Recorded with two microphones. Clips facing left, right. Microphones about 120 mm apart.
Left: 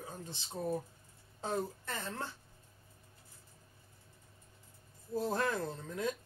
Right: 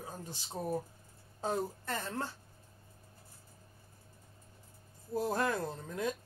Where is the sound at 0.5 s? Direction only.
20° right (ahead or behind).